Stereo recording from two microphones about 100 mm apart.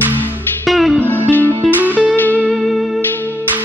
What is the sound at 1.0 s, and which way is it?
Music, 20° left (ahead or behind).